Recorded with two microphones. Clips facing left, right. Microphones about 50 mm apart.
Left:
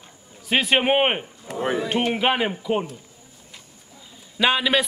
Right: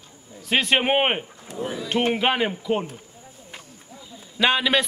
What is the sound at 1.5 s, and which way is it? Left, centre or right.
Speech, left.